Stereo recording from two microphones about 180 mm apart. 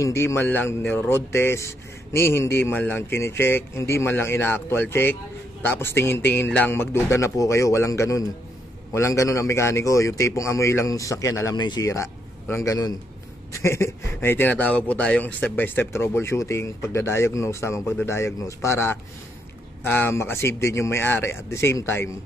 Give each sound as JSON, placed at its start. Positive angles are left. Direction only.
{"t": 0.0, "sound": "speech", "side_deg": 15}